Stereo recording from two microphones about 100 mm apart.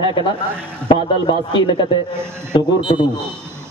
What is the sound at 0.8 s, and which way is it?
Speech, 45° left (ahead or behind).